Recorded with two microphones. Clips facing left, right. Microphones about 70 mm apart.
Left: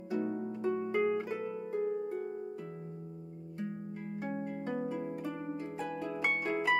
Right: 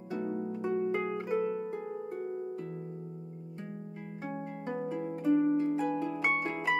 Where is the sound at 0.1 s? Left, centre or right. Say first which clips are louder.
Even; centre.